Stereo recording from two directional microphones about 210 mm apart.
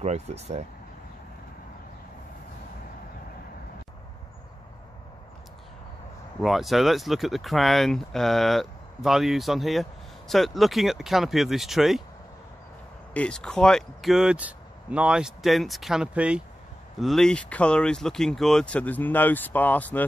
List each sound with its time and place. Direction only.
0.0 s speech: 30° right (ahead or behind)
6.4 s speech: centre (ahead or behind)
13.1 s speech: 5° left (ahead or behind)